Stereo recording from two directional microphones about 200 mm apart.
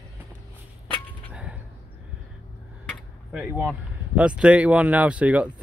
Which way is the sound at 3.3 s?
5° right (ahead or behind).